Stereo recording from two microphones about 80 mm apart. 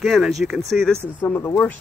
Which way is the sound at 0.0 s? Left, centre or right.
Centre.